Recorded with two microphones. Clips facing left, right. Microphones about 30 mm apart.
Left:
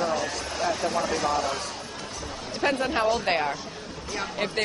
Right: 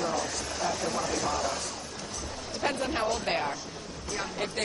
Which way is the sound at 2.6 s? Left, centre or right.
Left.